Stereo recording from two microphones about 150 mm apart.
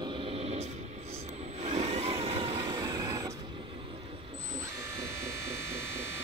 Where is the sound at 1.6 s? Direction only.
45° right (ahead or behind).